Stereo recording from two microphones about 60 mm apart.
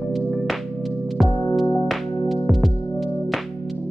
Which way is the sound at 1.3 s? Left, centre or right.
Centre.